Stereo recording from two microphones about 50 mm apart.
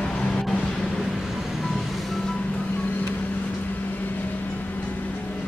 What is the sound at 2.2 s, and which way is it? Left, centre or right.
Vehicle, centre.